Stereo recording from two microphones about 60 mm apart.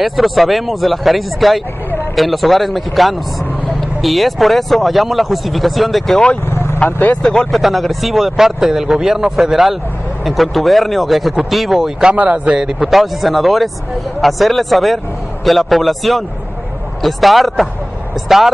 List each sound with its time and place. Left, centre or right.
0.0 s speech: centre
6.4 s vehicle: left
6.9 s speech: left
7.2 s speech: centre
7.5 s speech: centre
12.1 s speech: right
12.5 s speech: centre